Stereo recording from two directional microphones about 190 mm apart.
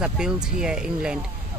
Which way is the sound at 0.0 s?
5° right (ahead or behind).